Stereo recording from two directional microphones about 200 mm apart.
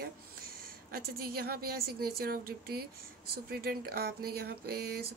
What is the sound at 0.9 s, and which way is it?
Speech, 50° right (ahead or behind).